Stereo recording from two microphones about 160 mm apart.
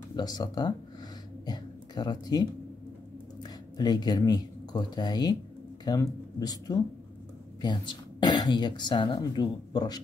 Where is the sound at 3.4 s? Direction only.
25° left (ahead or behind).